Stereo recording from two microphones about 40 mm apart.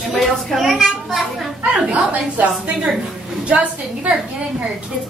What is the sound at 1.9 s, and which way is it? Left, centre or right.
A woman's voice, right.